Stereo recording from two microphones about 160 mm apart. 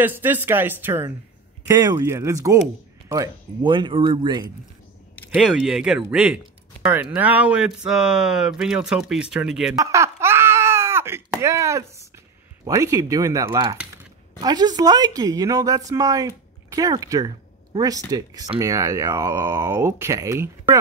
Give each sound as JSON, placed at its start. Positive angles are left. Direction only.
{"t": 0.0, "sound": "speech", "side_deg": -10}
{"t": 1.7, "sound": "speech", "side_deg": -25}
{"t": 5.3, "sound": "speech", "side_deg": -5}
{"t": 9.8, "sound": "a sound", "side_deg": -20}
{"t": 12.6, "sound": "speech", "side_deg": -20}